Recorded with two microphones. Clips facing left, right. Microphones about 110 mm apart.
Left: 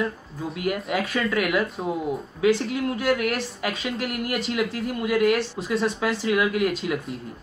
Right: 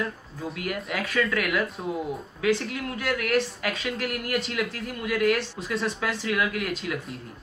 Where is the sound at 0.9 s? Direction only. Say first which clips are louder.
Even; 15° left (ahead or behind).